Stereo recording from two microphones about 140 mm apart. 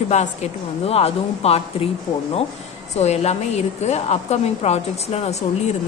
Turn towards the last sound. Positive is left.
turn(degrees=50)  # may be behind; listen again after turning